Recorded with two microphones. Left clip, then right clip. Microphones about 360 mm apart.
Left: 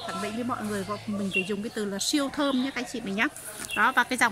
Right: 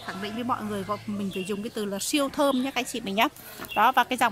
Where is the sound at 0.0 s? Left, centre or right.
Centre.